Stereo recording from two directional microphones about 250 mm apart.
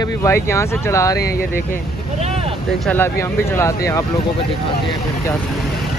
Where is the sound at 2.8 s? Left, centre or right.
Centre.